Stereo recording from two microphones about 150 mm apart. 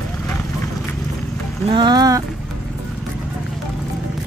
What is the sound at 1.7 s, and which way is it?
Speech, 30° right (ahead or behind).